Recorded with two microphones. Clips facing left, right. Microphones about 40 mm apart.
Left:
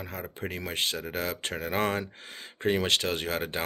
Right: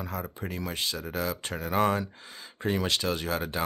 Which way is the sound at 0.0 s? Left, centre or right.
Left.